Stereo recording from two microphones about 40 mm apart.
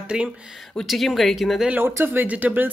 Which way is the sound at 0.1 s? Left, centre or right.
Centre.